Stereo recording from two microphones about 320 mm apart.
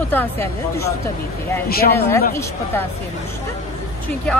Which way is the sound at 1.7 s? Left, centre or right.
Left.